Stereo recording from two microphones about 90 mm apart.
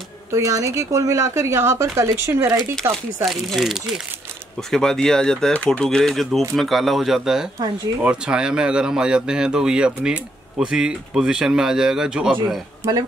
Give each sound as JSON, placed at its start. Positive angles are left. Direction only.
{"t": 0.3, "sound": "speech", "side_deg": -40}
{"t": 3.3, "sound": "speech", "side_deg": 0}